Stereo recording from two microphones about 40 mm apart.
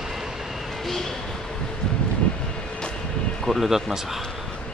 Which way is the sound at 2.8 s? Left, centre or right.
Left.